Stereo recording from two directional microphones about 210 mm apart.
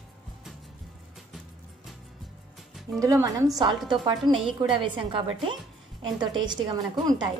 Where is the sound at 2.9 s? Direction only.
15° right (ahead or behind).